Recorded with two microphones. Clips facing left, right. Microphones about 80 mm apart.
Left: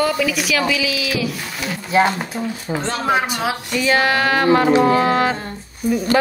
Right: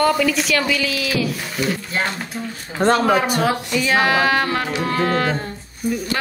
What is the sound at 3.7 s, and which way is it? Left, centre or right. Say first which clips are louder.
Speech: left 3 dB; centre.